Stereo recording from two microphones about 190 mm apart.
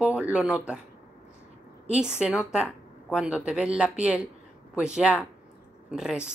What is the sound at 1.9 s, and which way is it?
A woman's voice, 5° right (ahead or behind).